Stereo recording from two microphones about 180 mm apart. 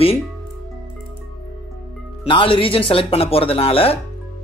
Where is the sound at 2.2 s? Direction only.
30° left (ahead or behind).